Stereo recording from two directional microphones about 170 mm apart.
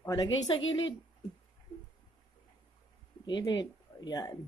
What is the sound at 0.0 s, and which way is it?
Speech, 20° left (ahead or behind).